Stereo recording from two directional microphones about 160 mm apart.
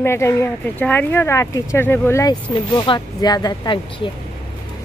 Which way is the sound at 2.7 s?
30° left (ahead or behind).